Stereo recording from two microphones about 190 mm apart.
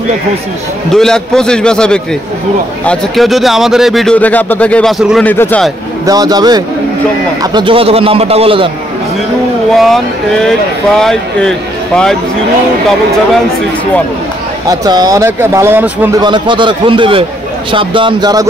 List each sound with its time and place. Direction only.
0.9 s a man's voice: 5° left (ahead or behind)
5.3 s a man's voice: 10° left (ahead or behind)
6.0 s a man's voice: 20° right (ahead or behind)
9.8 s a man's voice: centre (ahead or behind)
14.7 s speech: 20° right (ahead or behind)
16.2 s a man's voice: 25° right (ahead or behind)